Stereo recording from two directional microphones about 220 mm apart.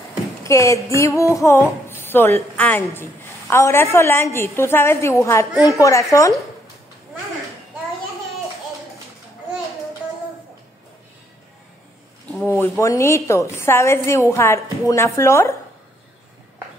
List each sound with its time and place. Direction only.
0.4 s a woman's voice: 15° left (ahead or behind)
12.4 s a woman's voice: 10° left (ahead or behind)